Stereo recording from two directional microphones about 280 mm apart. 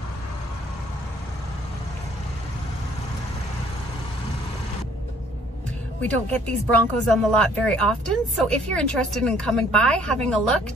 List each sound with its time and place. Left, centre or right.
5.9 s speech: centre